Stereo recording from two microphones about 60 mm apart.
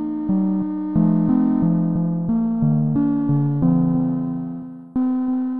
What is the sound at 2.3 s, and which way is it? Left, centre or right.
Music, right.